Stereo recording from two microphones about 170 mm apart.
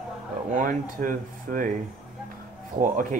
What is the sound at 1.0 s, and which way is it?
Speech, 55° right (ahead or behind).